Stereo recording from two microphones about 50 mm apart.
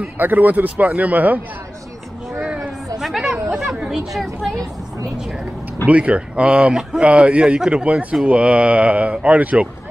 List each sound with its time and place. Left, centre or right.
0.0 s a man's voice: right
2.4 s a sound: right
3.0 s chatter: centre
5.9 s speech: right